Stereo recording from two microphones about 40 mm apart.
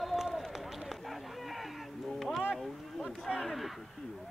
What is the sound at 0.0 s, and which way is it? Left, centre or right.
Run, centre.